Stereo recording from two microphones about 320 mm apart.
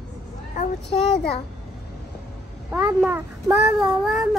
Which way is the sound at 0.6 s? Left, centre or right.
Left.